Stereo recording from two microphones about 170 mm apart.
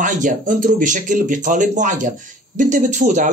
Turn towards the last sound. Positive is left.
turn(degrees=-45)  # may be behind; listen again after turning